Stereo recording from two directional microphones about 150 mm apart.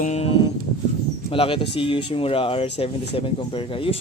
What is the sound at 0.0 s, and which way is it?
Music, 45° left (ahead or behind).